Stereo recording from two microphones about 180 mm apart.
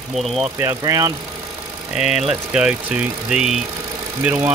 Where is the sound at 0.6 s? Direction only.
20° right (ahead or behind).